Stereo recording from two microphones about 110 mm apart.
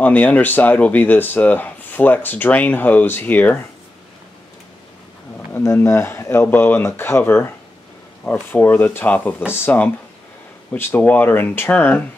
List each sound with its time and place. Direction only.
0.0 s speech: 15° left (ahead or behind)
5.5 s speech: 20° left (ahead or behind)